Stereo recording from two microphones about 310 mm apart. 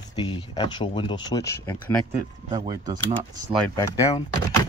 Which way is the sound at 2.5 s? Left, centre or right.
Centre.